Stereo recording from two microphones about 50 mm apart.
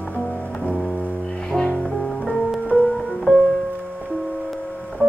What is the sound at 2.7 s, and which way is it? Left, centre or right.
Music, left.